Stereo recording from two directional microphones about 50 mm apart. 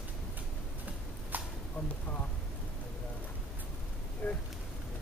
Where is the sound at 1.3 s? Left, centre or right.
Right.